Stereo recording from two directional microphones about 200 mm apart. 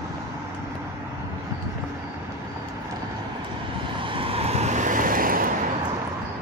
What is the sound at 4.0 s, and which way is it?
Vehicle, 25° right (ahead or behind).